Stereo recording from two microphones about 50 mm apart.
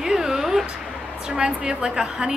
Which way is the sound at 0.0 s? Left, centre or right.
Centre.